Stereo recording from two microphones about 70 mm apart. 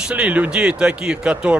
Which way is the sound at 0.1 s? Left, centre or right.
Right.